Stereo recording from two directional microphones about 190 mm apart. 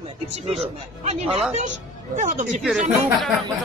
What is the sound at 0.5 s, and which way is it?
Speech, 30° right (ahead or behind).